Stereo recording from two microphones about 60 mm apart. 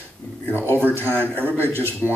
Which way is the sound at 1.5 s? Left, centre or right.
Right.